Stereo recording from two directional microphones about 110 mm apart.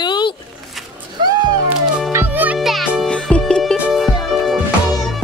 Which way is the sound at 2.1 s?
20° right (ahead or behind).